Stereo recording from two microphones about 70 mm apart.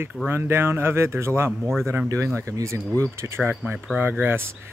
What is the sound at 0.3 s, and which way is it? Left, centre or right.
Speech, right.